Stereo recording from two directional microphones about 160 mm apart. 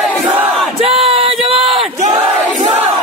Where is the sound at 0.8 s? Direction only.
35° right (ahead or behind).